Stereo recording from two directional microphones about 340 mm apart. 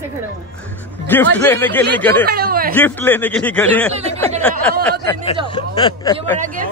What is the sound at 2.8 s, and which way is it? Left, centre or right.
Speech, centre.